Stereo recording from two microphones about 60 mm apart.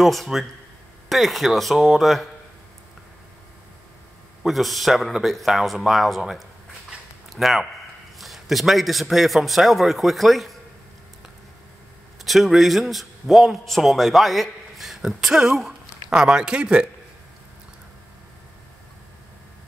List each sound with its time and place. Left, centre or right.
0.0 s a man's voice: centre
4.4 s a man's voice: centre
12.3 s a man's voice: centre